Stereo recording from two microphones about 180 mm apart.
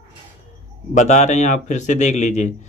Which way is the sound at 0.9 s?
40° left (ahead or behind).